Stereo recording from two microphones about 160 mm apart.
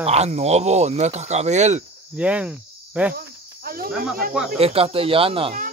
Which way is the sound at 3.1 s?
65° right (ahead or behind).